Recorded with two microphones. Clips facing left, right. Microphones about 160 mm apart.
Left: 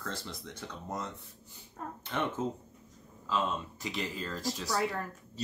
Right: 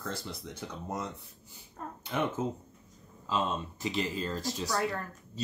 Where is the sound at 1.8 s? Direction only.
Centre (ahead or behind).